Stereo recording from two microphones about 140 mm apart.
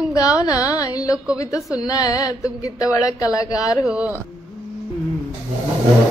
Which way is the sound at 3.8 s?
10° right (ahead or behind).